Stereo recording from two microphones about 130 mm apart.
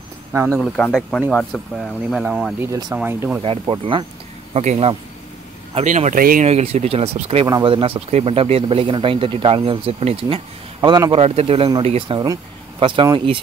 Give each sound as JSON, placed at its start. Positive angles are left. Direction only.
{"t": 0.5, "sound": "speech", "side_deg": 10}
{"t": 2.9, "sound": "speech", "side_deg": -15}
{"t": 3.4, "sound": "speech", "side_deg": -40}
{"t": 4.6, "sound": "speech", "side_deg": -55}
{"t": 5.8, "sound": "speech", "side_deg": -65}
{"t": 6.5, "sound": "speech", "side_deg": -50}
{"t": 7.4, "sound": "speech", "side_deg": -30}
{"t": 7.7, "sound": "speech", "side_deg": -45}
{"t": 10.8, "sound": "speech", "side_deg": -35}
{"t": 12.2, "sound": "speech", "side_deg": -30}